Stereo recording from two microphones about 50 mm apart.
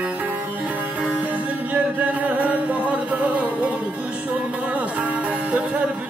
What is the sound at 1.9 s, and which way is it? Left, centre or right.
Music, right.